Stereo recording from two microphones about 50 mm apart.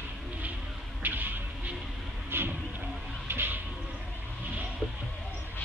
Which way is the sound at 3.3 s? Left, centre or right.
Right.